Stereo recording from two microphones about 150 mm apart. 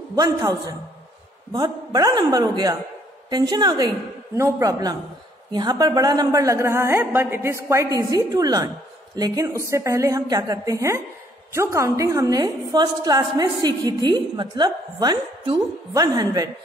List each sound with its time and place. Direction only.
0.1 s a woman's voice: 25° right (ahead or behind)